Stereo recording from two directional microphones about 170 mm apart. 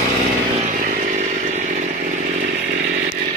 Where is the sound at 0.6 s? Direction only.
55° right (ahead or behind).